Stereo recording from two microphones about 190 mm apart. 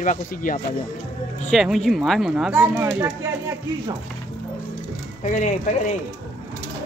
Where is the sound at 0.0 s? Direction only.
45° left (ahead or behind).